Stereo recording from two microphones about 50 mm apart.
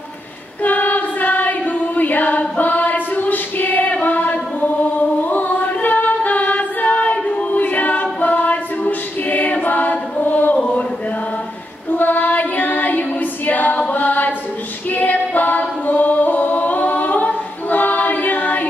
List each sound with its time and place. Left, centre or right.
0.6 s choir: left
12.0 s female singing: left
13.9 s a sound: left
14.9 s a capella: left